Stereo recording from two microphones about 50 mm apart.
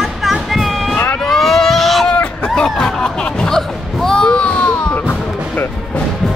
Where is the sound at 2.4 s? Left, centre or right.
Centre.